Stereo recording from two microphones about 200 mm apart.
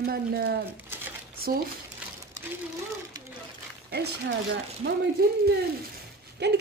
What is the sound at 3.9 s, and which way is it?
Speech, 55° right (ahead or behind).